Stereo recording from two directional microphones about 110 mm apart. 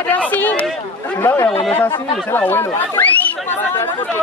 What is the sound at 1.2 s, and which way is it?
Speech, 25° left (ahead or behind).